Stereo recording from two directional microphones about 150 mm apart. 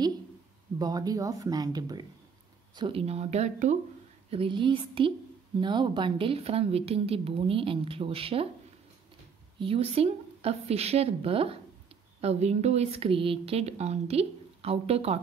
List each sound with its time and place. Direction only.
0.7 s a woman's voice: 25° right (ahead or behind); by 3.7 s 50° right (ahead or behind)
4.3 s a woman's voice: 35° right (ahead or behind)
9.6 s a woman's voice: 40° right (ahead or behind)